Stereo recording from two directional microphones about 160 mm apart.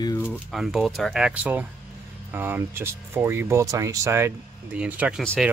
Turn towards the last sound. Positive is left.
turn(degrees=-5)  # may be behind; listen again after turning